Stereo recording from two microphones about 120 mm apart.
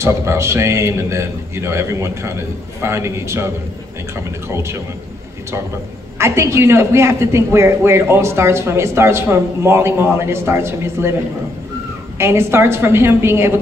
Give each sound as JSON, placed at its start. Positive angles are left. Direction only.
{"t": 0.0, "sound": "a woman's voice", "side_deg": -25}
{"t": 6.1, "sound": "a woman's voice", "side_deg": -20}
{"t": 12.2, "sound": "a woman's voice", "side_deg": -20}